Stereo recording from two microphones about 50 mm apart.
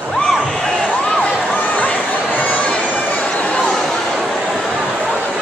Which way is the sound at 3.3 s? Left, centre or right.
Left.